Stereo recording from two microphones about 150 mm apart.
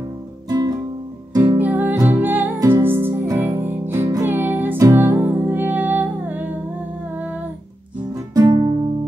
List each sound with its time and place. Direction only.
0.5 s music: 25° right (ahead or behind)
1.6 s music: 10° right (ahead or behind)
8.4 s music: 25° right (ahead or behind)